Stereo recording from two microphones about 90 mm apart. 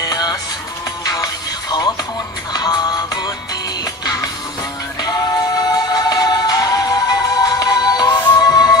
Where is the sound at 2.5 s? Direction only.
50° left (ahead or behind).